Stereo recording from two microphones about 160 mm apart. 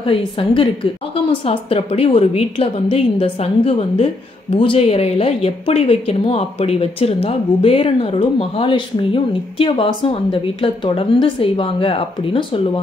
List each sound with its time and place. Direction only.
0.0 s a woman's voice: 35° left (ahead or behind)